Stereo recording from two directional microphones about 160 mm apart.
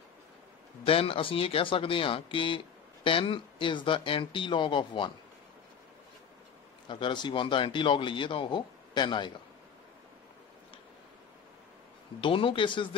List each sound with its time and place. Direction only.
0.8 s speech: 35° left (ahead or behind)
6.9 s speech: 30° left (ahead or behind)
12.2 s speech: 35° left (ahead or behind)